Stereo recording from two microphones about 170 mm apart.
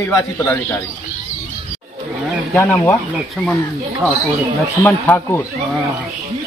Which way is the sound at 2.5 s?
10° left (ahead or behind).